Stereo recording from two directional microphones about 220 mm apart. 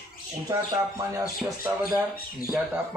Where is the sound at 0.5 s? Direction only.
15° right (ahead or behind).